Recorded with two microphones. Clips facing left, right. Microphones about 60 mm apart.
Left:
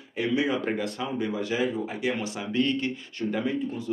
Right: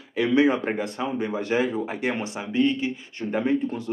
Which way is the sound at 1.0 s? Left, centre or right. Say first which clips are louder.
Right 2 dB; right.